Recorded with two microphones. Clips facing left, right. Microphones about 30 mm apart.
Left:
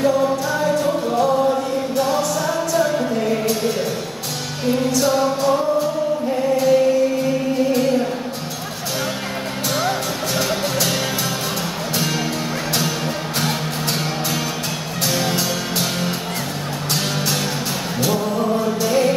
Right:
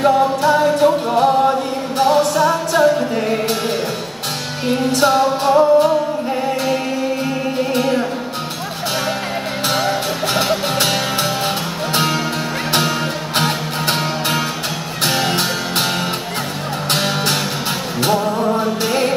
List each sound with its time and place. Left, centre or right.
0.4 s music: right
4.6 s music: right
13.4 s music: right
16.9 s music: right